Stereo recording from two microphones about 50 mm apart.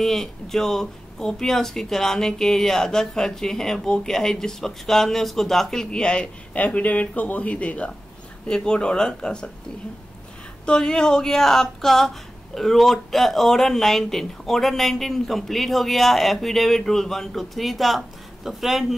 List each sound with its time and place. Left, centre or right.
0.0 s speech: centre
6.5 s speech: left
8.5 s speech: centre
10.6 s speech: centre